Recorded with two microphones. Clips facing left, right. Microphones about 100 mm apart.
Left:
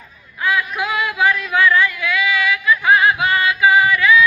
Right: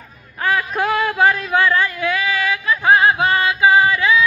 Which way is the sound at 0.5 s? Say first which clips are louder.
Right 2 dB; 40° right (ahead or behind).